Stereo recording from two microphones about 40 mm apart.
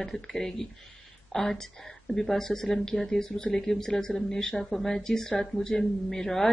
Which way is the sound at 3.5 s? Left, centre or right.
Centre.